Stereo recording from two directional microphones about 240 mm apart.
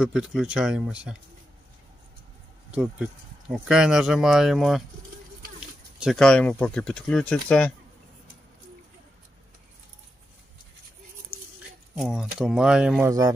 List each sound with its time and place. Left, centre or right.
0.0 s speech: centre
2.7 s speech: centre
5.9 s speech: centre
12.0 s speech: centre